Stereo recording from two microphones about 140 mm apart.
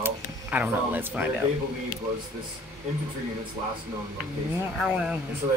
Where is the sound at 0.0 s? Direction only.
10° right (ahead or behind).